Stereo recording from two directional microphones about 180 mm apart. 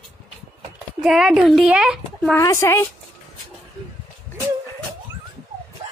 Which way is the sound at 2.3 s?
15° left (ahead or behind).